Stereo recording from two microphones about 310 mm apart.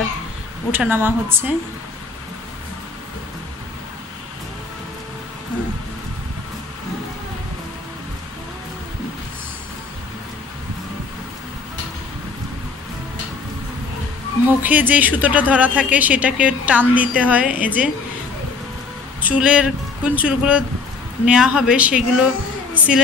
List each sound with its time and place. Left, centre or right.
0.7 s a woman's voice: centre
14.6 s speech: centre
19.2 s speech: centre